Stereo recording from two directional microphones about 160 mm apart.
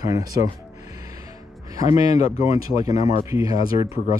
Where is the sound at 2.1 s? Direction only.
40° left (ahead or behind).